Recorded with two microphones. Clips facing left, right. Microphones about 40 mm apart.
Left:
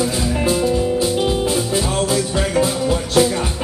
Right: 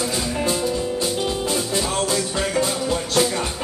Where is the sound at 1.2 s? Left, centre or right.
Centre.